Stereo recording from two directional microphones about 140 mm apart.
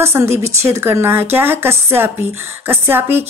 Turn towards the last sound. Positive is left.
turn(degrees=-15)  # may be behind; listen again after turning